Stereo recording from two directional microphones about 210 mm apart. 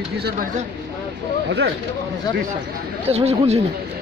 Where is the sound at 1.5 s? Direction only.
55° right (ahead or behind).